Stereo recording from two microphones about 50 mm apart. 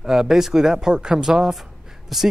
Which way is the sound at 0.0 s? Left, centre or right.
Centre.